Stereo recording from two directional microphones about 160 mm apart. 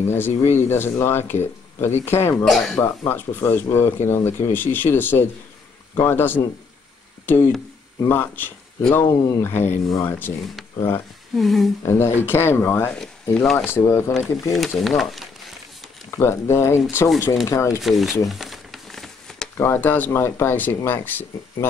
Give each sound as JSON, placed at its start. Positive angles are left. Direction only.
{"t": 0.0, "sound": "speech", "side_deg": 15}
{"t": 2.4, "sound": "speech", "side_deg": 0}
{"t": 2.8, "sound": "speech", "side_deg": 15}
{"t": 8.1, "sound": "speech", "side_deg": 10}
{"t": 11.3, "sound": "speech", "side_deg": 0}
{"t": 11.8, "sound": "speech", "side_deg": 15}
{"t": 13.7, "sound": "speech", "side_deg": 15}
{"t": 14.1, "sound": "speech", "side_deg": 0}
{"t": 16.1, "sound": "speech", "side_deg": 15}
{"t": 17.8, "sound": "speech", "side_deg": 0}
{"t": 18.2, "sound": "crumpling", "side_deg": 0}
{"t": 19.5, "sound": "speech", "side_deg": 15}